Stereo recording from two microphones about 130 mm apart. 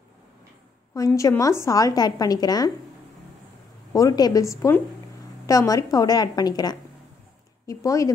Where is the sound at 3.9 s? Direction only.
30° left (ahead or behind).